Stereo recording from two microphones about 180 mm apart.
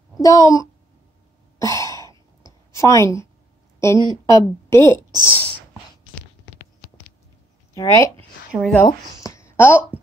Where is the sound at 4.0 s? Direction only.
25° right (ahead or behind).